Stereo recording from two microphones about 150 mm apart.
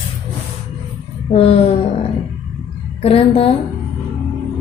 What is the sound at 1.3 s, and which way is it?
Music, 40° left (ahead or behind).